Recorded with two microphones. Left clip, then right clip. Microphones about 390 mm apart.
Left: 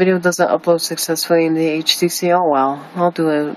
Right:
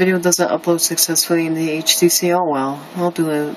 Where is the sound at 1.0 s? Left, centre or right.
Right.